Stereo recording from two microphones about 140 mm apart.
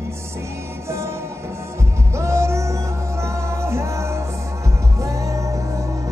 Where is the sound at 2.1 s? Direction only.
20° right (ahead or behind).